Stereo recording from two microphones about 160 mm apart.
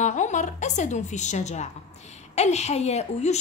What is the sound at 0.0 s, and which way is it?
A woman's voice, 50° left (ahead or behind).